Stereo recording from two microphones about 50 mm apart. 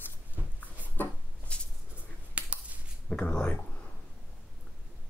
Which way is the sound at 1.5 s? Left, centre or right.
Left.